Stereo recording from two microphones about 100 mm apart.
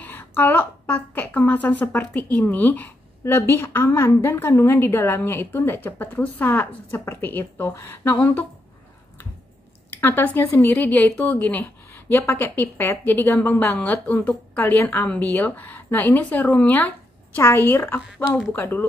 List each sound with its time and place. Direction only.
0.0 s a woman's voice: 20° left (ahead or behind)
9.8 s a woman's voice: 20° left (ahead or behind)